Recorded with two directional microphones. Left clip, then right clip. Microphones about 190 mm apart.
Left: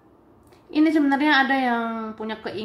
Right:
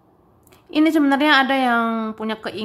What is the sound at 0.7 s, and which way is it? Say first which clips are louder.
A woman's voice: right 3 dB; 20° right (ahead or behind).